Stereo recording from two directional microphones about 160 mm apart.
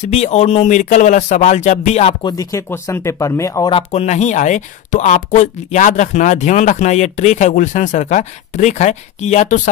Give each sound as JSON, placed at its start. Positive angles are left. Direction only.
{"t": 0.0, "sound": "speech", "side_deg": 45}
{"t": 2.2, "sound": "speech", "side_deg": 20}
{"t": 3.7, "sound": "speech", "side_deg": 45}